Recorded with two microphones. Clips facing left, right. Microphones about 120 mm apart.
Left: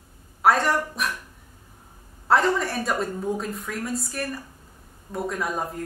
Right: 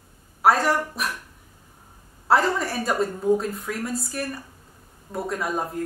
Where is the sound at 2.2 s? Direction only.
Centre (ahead or behind).